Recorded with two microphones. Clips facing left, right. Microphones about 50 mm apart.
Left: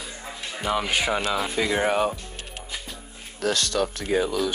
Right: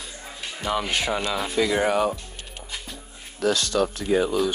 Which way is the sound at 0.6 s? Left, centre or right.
Centre.